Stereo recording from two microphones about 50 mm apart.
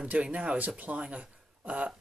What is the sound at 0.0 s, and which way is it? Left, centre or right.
Speech, right.